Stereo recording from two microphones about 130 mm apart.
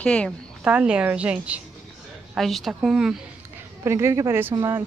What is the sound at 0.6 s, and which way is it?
A woman's voice, 10° right (ahead or behind).